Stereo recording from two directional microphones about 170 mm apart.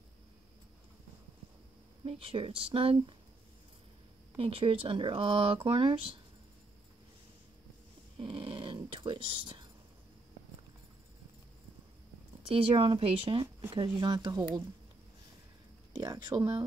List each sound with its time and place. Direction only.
2.0 s speech: 30° right (ahead or behind)
4.4 s speech: 35° right (ahead or behind)
8.2 s a sound: 30° right (ahead or behind)
12.4 s speech: 35° right (ahead or behind)
16.0 s speech: 25° right (ahead or behind)